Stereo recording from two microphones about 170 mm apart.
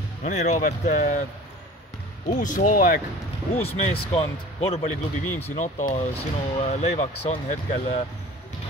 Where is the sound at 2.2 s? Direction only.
50° left (ahead or behind).